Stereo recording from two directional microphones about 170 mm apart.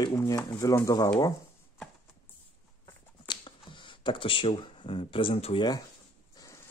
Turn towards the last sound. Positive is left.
turn(degrees=35)  # may be behind; listen again after turning